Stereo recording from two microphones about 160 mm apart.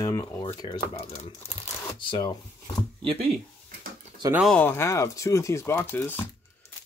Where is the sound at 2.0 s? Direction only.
30° left (ahead or behind).